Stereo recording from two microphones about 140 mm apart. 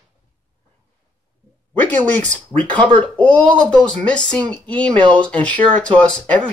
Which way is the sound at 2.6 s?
10° left (ahead or behind).